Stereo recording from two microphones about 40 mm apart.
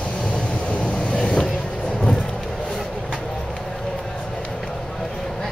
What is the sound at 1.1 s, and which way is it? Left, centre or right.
Vehicle, centre.